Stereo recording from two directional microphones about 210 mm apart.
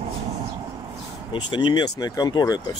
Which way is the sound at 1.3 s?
25° left (ahead or behind).